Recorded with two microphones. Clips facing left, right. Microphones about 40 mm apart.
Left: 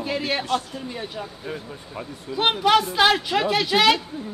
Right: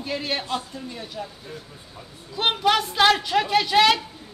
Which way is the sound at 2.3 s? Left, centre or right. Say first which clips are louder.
Left 2 dB; centre.